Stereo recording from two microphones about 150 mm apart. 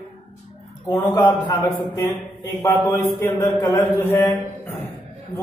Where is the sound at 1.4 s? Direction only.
20° left (ahead or behind).